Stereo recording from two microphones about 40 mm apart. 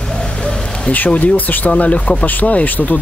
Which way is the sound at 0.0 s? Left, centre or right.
Centre.